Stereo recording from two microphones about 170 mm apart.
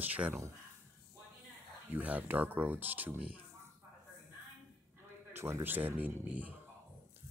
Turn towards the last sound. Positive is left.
turn(degrees=-10)  # may be behind; listen again after turning